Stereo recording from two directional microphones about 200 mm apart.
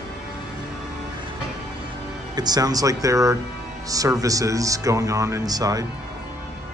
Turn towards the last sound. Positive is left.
turn(degrees=-20)  # may be behind; listen again after turning